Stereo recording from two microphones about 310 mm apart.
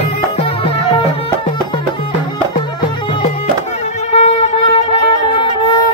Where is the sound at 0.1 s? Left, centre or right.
Centre.